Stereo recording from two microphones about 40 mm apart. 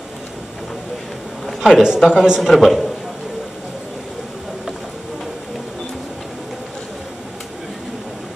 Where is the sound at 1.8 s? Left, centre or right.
Centre.